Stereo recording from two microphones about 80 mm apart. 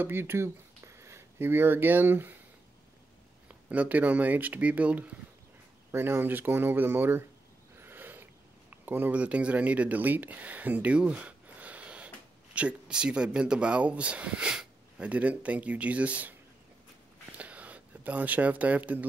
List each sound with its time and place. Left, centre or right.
0.0 s speech: right
3.4 s speech: centre
5.9 s speech: right
7.8 s a sound: right
12.5 s speech: centre
17.3 s a sound: centre